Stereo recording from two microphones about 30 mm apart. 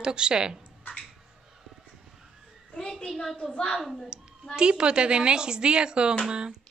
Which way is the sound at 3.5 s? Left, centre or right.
Left.